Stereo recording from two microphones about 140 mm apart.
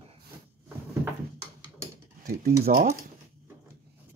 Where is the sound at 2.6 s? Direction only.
70° right (ahead or behind).